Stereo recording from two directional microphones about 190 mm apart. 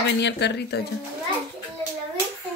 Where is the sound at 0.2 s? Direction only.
65° left (ahead or behind).